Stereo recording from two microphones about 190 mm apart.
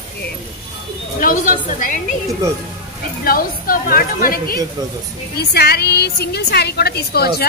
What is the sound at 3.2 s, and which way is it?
A woman's voice, 50° left (ahead or behind).